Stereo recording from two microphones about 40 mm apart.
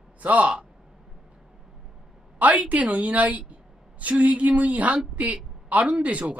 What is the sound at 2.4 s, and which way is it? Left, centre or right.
A woman's voice, right.